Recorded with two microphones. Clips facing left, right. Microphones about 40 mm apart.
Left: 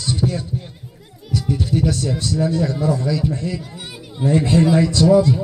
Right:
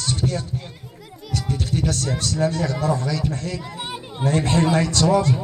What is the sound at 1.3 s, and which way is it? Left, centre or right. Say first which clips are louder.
A man's voice: left 4 dB; right.